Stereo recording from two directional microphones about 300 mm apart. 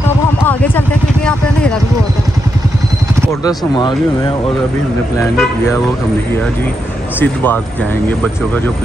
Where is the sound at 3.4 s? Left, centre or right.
Centre.